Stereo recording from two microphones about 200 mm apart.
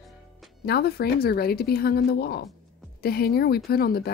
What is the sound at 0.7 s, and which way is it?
Speech, 50° left (ahead or behind).